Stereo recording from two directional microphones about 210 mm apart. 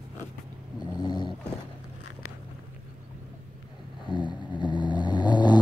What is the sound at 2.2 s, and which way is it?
Biting, 85° left.